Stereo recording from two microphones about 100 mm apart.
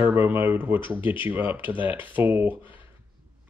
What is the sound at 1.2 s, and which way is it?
Speech, 20° right (ahead or behind).